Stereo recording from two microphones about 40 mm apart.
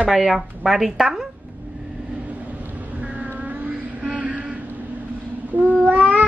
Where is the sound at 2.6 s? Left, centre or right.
Right.